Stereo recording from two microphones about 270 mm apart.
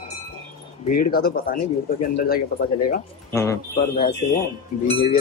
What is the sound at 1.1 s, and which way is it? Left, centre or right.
Speech, left.